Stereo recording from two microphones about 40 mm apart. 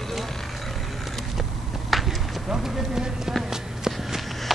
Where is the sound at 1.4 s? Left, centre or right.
Centre.